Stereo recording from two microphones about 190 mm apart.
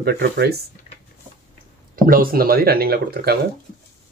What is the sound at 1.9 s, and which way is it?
Speech, 50° right (ahead or behind).